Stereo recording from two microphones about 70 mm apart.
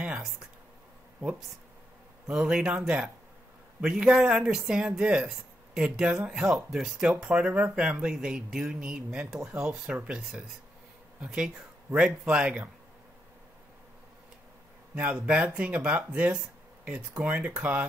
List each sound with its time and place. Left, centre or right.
2.2 s speech: centre
15.0 s a man's voice: centre